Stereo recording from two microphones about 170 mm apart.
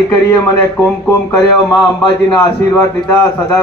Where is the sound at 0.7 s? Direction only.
10° left (ahead or behind).